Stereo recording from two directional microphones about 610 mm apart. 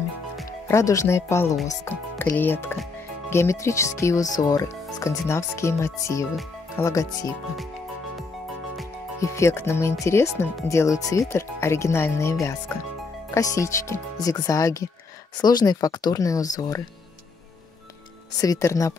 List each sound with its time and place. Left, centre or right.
0.4 s speech: centre
8.7 s speech: centre
18.4 s speech: centre